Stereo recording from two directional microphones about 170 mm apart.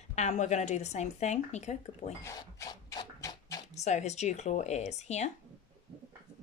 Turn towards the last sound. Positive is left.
turn(degrees=40)  # may be behind; listen again after turning